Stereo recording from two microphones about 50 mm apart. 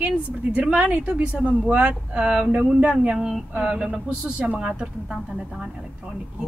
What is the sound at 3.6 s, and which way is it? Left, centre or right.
Speech, centre.